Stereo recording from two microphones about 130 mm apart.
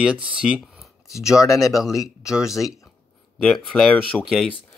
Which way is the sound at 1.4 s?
25° left (ahead or behind).